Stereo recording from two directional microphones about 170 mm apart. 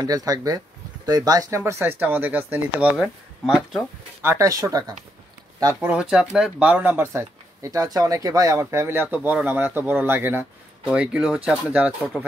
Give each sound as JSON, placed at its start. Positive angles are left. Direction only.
{"t": 0.0, "sound": "speech", "side_deg": -20}
{"t": 4.3, "sound": "speech", "side_deg": -20}
{"t": 5.8, "sound": "speech", "side_deg": -5}